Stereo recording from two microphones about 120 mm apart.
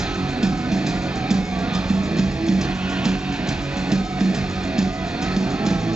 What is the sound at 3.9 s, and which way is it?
Music, 5° right (ahead or behind).